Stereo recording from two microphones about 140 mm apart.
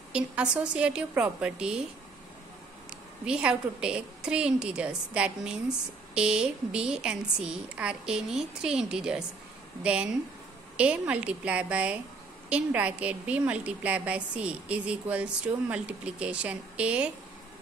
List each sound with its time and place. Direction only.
0.1 s a woman's voice: 5° right (ahead or behind)
3.3 s a woman's voice: 5° right (ahead or behind)
10.8 s a woman's voice: 10° right (ahead or behind)